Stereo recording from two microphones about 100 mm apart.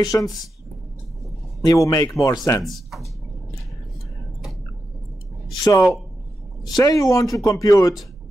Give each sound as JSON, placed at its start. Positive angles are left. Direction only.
{"t": 0.0, "sound": "speech", "side_deg": 40}
{"t": 1.6, "sound": "speech", "side_deg": 35}
{"t": 2.6, "sound": "speech", "side_deg": 0}
{"t": 5.6, "sound": "speech", "side_deg": 40}